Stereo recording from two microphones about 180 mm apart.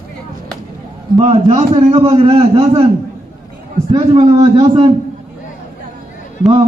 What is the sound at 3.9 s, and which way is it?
Speech, 25° right (ahead or behind).